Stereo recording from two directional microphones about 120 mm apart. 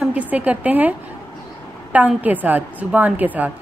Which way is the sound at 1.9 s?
15° right (ahead or behind).